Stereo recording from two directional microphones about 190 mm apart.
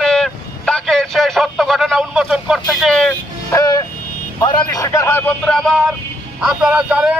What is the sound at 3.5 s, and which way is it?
A man's voice, 20° left (ahead or behind).